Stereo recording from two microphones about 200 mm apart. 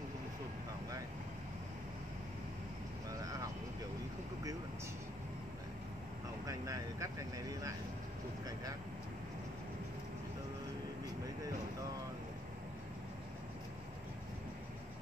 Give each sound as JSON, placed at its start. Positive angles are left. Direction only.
{"t": 6.4, "sound": "vehicle", "side_deg": -15}